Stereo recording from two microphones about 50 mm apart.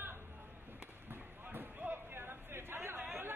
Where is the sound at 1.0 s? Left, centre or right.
Right.